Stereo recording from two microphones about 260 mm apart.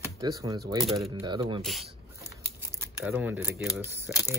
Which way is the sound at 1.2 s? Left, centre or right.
Centre.